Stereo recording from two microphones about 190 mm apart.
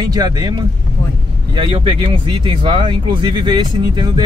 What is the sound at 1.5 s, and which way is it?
Speech, 25° right (ahead or behind).